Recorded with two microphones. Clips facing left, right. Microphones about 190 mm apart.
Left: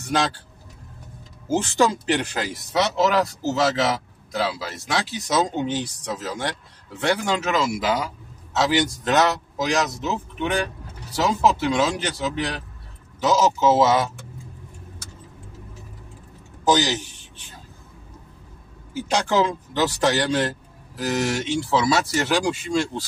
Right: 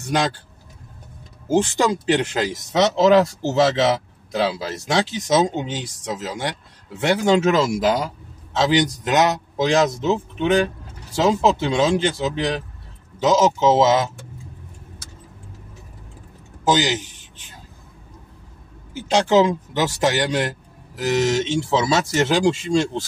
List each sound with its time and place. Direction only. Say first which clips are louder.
0.0 s speech: right 2 dB; 15° right (ahead or behind)
1.5 s speech: right 2 dB; 15° right (ahead or behind)
2.7 s speech: right 6 dB; 25° right (ahead or behind)
8.5 s speech: right 3 dB; 20° right (ahead or behind)
9.6 s speech: right 6 dB; 25° right (ahead or behind)
16.7 s speech: right 2 dB; 15° right (ahead or behind)
19.1 s speech: right 5 dB; 20° right (ahead or behind)